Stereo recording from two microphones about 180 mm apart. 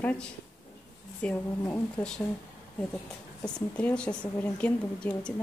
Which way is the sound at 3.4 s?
5° left (ahead or behind).